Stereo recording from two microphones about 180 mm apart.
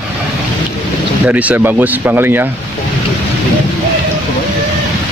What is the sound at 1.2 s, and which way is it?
Speech, 10° right (ahead or behind).